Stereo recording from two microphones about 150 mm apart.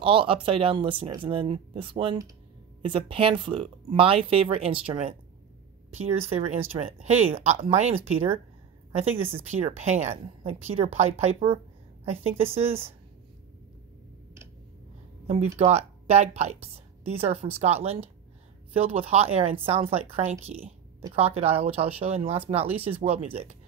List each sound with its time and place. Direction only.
0.0 s speech: 35° right (ahead or behind)
5.9 s speech: 45° right (ahead or behind)
15.2 s speech: 45° right (ahead or behind)
18.9 s speech: 40° right (ahead or behind)